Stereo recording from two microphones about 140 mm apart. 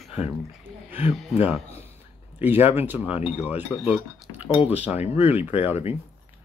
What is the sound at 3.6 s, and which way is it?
Cutlery, 10° right (ahead or behind).